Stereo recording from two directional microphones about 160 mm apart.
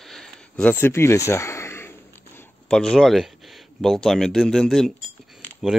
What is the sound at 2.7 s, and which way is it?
Speech, 5° left (ahead or behind).